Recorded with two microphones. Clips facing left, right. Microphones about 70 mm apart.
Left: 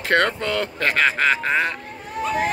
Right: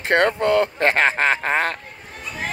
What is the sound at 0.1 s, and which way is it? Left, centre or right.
Speech, right.